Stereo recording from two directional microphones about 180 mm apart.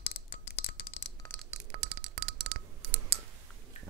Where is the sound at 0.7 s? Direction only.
45° left (ahead or behind).